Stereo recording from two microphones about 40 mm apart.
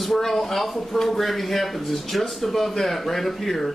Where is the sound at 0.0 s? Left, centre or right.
Centre.